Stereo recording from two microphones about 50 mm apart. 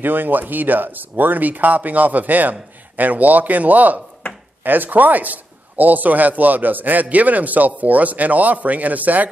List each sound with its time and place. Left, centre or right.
0.0 s a man's voice: right